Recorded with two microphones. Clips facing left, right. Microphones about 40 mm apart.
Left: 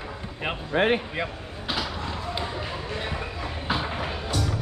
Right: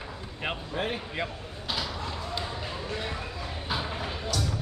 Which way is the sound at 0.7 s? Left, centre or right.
Left.